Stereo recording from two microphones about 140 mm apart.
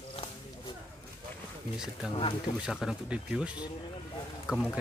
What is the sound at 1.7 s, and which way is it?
Speech, 5° right (ahead or behind).